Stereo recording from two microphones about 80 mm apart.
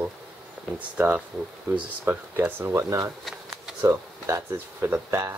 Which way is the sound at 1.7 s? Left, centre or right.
Right.